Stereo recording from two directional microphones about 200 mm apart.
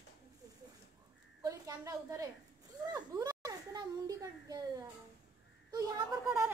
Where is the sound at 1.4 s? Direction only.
15° right (ahead or behind).